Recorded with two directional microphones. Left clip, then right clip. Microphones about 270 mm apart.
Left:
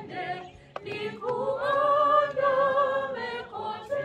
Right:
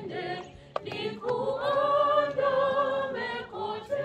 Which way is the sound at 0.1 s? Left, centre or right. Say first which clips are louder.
Left 2 dB; centre.